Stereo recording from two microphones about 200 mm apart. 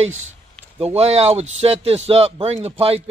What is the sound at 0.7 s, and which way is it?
A man's voice, 30° right (ahead or behind).